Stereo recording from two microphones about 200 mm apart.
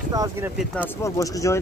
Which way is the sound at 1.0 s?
15° left (ahead or behind).